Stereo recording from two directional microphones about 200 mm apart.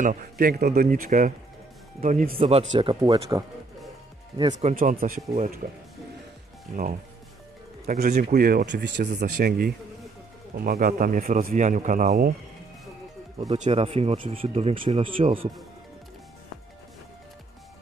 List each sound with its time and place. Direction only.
0.0 s a man's voice: 45° right (ahead or behind); by 3.0 s 30° right (ahead or behind)
3.0 s speech: 15° right (ahead or behind)
4.4 s speech: 30° right (ahead or behind)
8.1 s a man's voice: 45° right (ahead or behind)
13.5 s speech: 30° right (ahead or behind)